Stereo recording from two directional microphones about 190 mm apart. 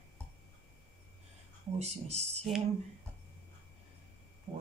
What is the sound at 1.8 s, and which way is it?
Speech, 35° right (ahead or behind).